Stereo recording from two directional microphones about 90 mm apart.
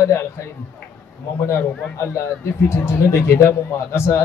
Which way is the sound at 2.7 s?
30° left (ahead or behind).